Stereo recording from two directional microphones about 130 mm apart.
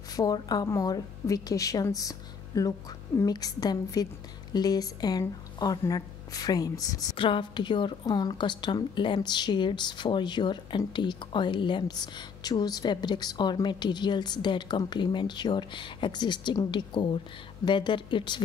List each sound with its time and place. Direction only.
0.1 s a woman's voice: 30° left (ahead or behind)
7.2 s a woman's voice: 40° left (ahead or behind)